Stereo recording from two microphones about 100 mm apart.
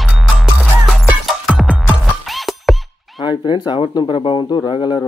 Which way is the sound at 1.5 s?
5° right (ahead or behind).